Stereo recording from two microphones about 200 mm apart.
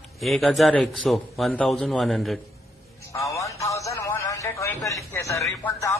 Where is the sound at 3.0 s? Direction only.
15° left (ahead or behind).